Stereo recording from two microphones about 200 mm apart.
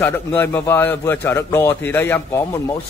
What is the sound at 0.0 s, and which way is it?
Speech, 10° left (ahead or behind).